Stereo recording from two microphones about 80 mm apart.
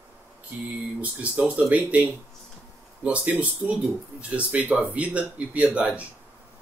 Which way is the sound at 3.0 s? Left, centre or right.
Centre.